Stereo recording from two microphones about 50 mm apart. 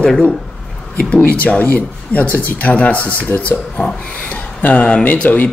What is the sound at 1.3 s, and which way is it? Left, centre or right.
Speech, left.